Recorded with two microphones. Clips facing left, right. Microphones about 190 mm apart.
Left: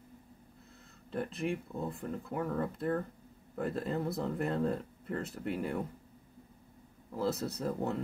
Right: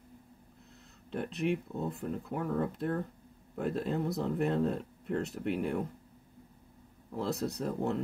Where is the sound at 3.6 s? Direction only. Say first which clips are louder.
Right 2 dB; centre (ahead or behind).